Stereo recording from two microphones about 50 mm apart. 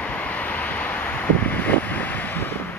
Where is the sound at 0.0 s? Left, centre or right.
Left.